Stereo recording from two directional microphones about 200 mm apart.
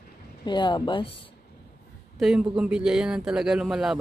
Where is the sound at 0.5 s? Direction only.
20° left (ahead or behind).